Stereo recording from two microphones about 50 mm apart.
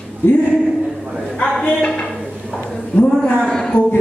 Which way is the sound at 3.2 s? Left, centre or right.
Centre.